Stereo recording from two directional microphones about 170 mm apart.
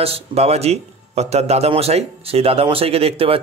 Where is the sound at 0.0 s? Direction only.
35° right (ahead or behind).